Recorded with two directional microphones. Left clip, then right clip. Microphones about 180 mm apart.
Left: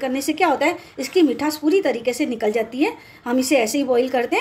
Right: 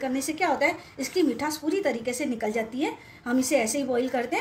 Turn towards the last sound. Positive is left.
turn(degrees=55)  # may be behind; listen again after turning